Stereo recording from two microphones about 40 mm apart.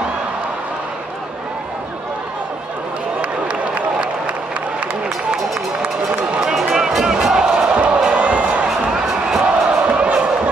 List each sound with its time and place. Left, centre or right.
3.2 s a sound: right
6.5 s music: centre
7.7 s music: right
8.6 s music: centre